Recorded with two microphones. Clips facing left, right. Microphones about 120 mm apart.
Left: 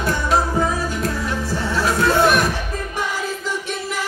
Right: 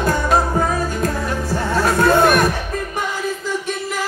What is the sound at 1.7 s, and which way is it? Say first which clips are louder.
Music: right 4 dB; 50° right (ahead or behind).